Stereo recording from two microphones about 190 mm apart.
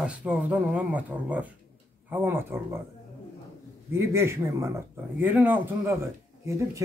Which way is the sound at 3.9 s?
15° right (ahead or behind).